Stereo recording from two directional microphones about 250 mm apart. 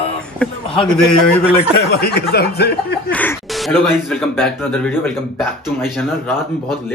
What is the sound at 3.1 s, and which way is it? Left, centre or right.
Speech, centre.